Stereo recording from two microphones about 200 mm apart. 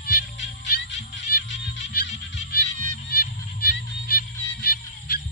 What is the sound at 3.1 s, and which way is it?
Music, 50° left (ahead or behind).